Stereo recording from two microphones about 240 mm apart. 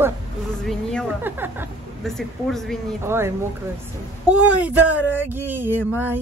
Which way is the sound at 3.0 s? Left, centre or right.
Centre.